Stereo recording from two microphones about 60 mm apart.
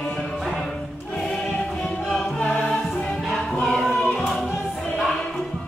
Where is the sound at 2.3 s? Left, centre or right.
Centre.